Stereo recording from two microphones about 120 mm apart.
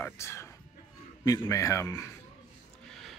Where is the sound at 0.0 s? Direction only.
20° left (ahead or behind).